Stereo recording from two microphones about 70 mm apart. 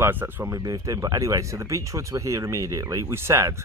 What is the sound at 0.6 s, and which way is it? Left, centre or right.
Speech, right.